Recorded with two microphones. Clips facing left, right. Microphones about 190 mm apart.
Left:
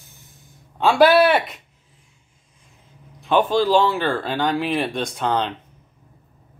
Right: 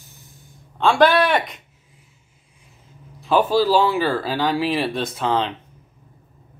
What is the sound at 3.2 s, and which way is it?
Speech, 5° right (ahead or behind).